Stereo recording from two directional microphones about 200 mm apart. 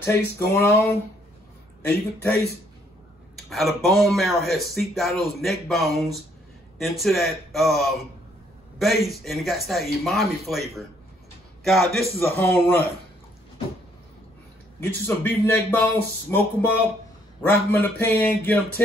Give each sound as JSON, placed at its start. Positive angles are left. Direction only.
{"t": 0.0, "sound": "a man's voice", "side_deg": 10}
{"t": 1.8, "sound": "a man's voice", "side_deg": 10}
{"t": 3.3, "sound": "speech", "side_deg": 0}
{"t": 11.6, "sound": "a man's voice", "side_deg": 0}
{"t": 14.8, "sound": "a man's voice", "side_deg": 10}